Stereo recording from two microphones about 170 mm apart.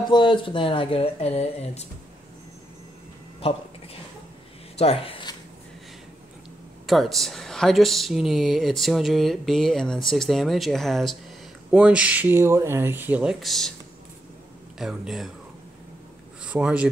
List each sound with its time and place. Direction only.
0.1 s speech: 30° left (ahead or behind)
4.7 s speech: 35° left (ahead or behind)
6.9 s speech: centre (ahead or behind)
14.8 s speech: centre (ahead or behind)
16.4 s speech: 5° right (ahead or behind)